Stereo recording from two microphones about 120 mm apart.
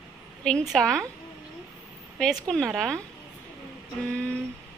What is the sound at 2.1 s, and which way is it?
Speech, 5° left (ahead or behind).